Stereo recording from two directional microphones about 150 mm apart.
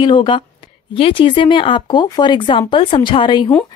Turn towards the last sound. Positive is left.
turn(degrees=30)  # may be behind; listen again after turning